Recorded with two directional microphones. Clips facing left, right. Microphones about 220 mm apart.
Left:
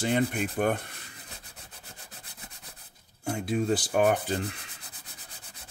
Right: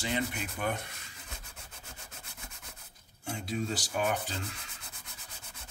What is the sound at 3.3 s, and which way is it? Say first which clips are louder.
Speech: left 8 dB; 55° left (ahead or behind).